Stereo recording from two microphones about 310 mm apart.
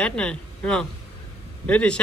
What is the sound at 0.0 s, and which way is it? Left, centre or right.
Speech, centre.